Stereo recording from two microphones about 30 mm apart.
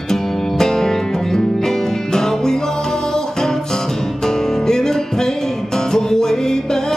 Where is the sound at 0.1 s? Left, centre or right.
Centre.